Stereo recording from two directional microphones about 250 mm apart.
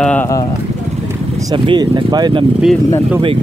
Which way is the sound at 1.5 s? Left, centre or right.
Centre.